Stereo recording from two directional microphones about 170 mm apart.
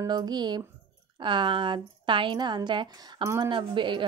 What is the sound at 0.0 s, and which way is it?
Speech, 25° right (ahead or behind).